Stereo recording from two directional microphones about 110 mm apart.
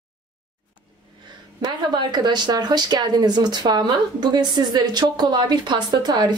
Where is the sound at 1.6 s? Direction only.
40° right (ahead or behind).